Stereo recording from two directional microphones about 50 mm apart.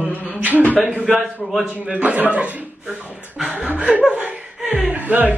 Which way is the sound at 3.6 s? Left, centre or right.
Right.